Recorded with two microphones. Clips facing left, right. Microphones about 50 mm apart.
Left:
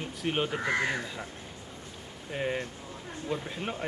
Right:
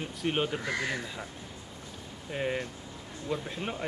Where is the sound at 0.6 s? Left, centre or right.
Left.